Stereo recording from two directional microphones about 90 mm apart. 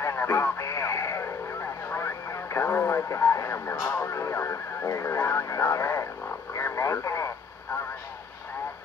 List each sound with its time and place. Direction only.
0.0 s vehicle: 30° left (ahead or behind)
3.8 s radio: 30° left (ahead or behind)